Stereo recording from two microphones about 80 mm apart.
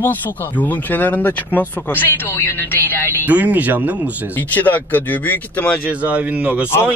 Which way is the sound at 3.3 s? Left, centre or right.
Centre.